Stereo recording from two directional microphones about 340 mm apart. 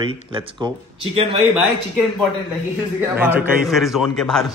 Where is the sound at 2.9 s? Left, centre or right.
Centre.